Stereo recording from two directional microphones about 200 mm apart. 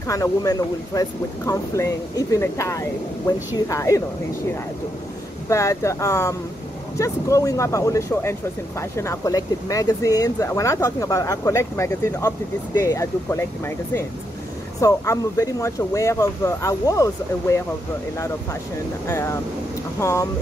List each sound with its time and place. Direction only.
0.1 s speech: 15° left (ahead or behind)
5.5 s speech: 15° left (ahead or behind)
19.0 s speech: 15° left (ahead or behind)